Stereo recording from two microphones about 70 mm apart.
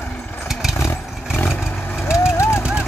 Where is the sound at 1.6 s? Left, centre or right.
Centre.